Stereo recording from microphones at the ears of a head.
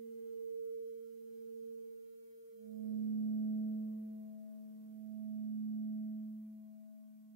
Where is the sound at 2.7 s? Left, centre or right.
Right.